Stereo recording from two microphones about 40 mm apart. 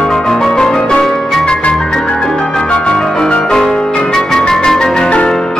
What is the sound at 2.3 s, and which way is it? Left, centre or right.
Music, centre.